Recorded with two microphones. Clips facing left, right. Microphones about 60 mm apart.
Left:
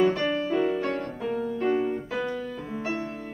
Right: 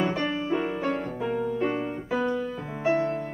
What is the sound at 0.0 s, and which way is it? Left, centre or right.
Music, centre.